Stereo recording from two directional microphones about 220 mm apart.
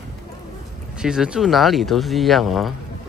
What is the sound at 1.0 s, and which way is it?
Speech, 5° right (ahead or behind).